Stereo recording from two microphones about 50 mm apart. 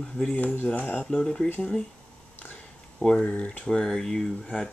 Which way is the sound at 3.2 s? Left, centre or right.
Left.